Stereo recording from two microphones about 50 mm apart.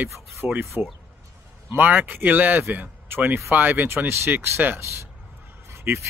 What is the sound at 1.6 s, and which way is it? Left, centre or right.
Speech, right.